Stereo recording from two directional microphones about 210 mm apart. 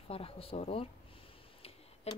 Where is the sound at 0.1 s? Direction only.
25° left (ahead or behind).